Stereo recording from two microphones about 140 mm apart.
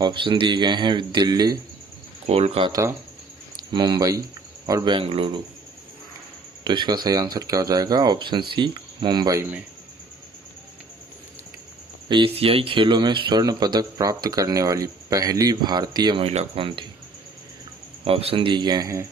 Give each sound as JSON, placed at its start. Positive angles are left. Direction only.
{"t": 0.0, "sound": "speech", "side_deg": -35}
{"t": 2.2, "sound": "speech", "side_deg": -50}
{"t": 2.7, "sound": "speech", "side_deg": -20}
{"t": 3.7, "sound": "speech", "side_deg": -30}
{"t": 4.9, "sound": "speech", "side_deg": -40}
{"t": 6.6, "sound": "speech", "side_deg": -35}
{"t": 12.1, "sound": "speech", "side_deg": -40}
{"t": 16.3, "sound": "speech", "side_deg": -40}
{"t": 18.0, "sound": "speech", "side_deg": -45}